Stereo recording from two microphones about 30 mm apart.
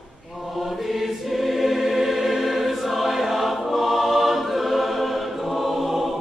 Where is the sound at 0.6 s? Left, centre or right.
Centre.